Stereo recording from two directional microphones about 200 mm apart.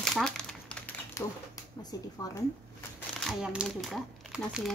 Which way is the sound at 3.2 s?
Centre (ahead or behind).